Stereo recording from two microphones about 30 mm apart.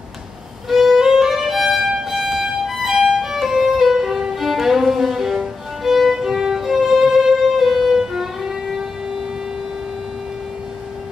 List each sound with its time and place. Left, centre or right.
0.7 s violin: centre
4.4 s music: centre
5.9 s violin: centre
6.1 s violin: centre
7.5 s music: centre
7.9 s music: centre